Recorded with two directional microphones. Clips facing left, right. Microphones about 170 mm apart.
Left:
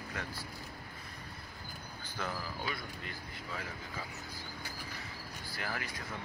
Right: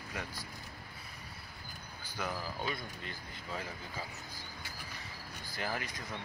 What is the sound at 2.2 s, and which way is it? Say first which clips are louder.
Speech: right 1 dB; 10° right (ahead or behind).